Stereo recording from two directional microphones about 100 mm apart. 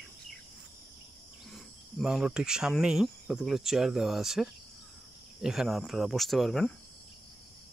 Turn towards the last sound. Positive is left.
turn(degrees=5)  # may be behind; listen again after turning